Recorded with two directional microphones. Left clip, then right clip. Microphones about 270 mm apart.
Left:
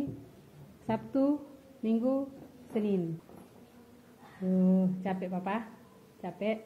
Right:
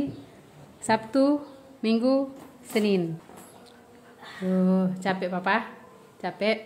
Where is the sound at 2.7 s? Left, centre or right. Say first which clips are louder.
Right 8 dB; right.